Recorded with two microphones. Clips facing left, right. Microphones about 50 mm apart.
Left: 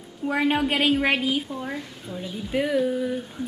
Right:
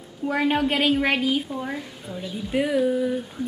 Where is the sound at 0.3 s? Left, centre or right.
Centre.